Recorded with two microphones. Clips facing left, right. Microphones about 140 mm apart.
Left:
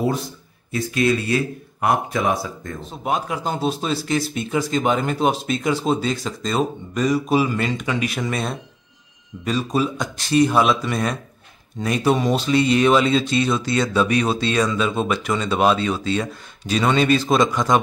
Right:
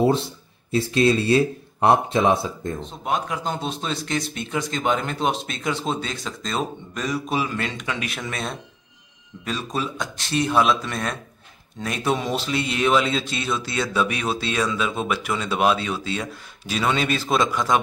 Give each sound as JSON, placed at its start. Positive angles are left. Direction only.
{"t": 0.0, "sound": "speech", "side_deg": -25}
{"t": 2.8, "sound": "speech", "side_deg": 5}